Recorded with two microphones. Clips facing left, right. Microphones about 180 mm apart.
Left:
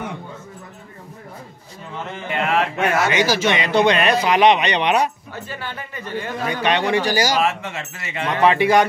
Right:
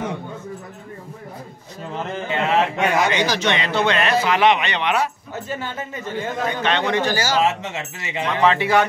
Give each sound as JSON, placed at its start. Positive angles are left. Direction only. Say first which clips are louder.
{"t": 2.2, "sound": "speech", "louder": "right 1 dB", "side_deg": -20}
{"t": 3.1, "sound": "speech", "louder": "left 2 dB", "side_deg": 10}
{"t": 5.3, "sound": "speech", "louder": "right 3 dB", "side_deg": -20}
{"t": 6.5, "sound": "speech", "louder": "left 3 dB", "side_deg": 10}
{"t": 7.4, "sound": "speech", "louder": "right 1 dB", "side_deg": -20}
{"t": 8.3, "sound": "speech", "louder": "left 2 dB", "side_deg": 15}